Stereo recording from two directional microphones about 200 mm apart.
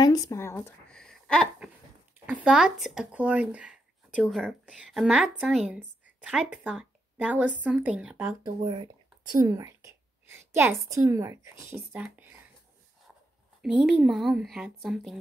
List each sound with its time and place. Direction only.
0.0 s a woman's voice: 15° left (ahead or behind); by 8.4 s 5° right (ahead or behind)
8.5 s whispering: 25° right (ahead or behind)
10.7 s speech: 15° right (ahead or behind)
13.6 s speech: 5° right (ahead or behind)